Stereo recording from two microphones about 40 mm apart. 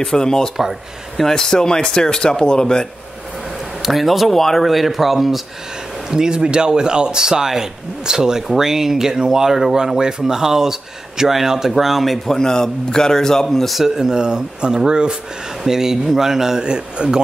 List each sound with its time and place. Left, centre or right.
0.0 s a man's voice: centre
0.6 s speech: centre
1.2 s a man's voice: centre
3.8 s speech: centre
6.0 s a man's voice: centre
12.3 s a man's voice: centre
13.7 s a man's voice: centre